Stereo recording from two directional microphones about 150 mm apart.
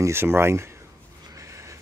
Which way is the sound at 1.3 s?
20° right (ahead or behind).